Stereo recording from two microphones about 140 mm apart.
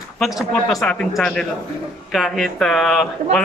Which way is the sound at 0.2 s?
Centre (ahead or behind).